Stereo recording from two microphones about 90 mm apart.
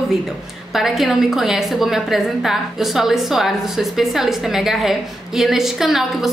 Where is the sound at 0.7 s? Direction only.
Centre (ahead or behind).